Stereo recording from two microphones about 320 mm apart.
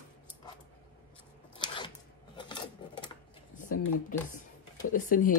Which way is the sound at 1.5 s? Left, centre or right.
Centre.